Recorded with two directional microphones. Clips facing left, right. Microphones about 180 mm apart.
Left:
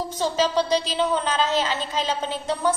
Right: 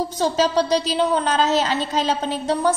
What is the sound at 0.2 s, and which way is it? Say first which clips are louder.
A woman's voice: right 3 dB; 40° right (ahead or behind).